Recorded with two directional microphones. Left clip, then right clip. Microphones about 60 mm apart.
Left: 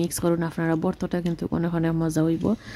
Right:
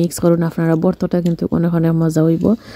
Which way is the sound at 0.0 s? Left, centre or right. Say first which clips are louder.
Right 9 dB; right.